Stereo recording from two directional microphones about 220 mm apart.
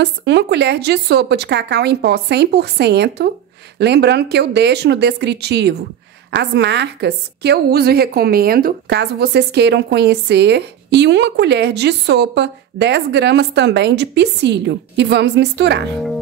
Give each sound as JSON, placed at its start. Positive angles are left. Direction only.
{"t": 0.0, "sound": "a woman's voice", "side_deg": -50}